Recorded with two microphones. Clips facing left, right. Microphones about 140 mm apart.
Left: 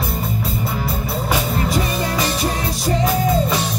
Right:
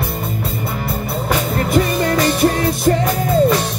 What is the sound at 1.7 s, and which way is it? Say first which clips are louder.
Music: right 5 dB; 55° right (ahead or behind).